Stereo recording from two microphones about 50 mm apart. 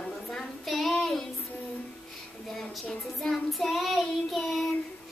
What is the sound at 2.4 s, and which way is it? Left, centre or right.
Speech, centre.